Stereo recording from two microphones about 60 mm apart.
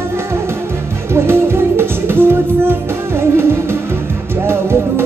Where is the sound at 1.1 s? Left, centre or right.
Right.